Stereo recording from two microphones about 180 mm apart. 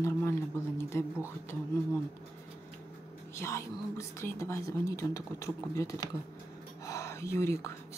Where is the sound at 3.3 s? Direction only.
15° left (ahead or behind).